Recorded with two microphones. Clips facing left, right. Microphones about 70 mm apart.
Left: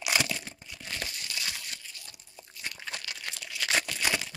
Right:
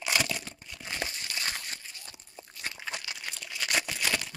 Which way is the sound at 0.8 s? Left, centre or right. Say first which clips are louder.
Right 2 dB; right.